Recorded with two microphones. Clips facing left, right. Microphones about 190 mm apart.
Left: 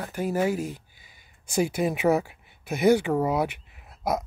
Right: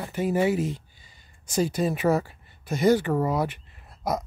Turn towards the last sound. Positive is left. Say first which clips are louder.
# left 1 dB
turn(degrees=10)  # may be behind; listen again after turning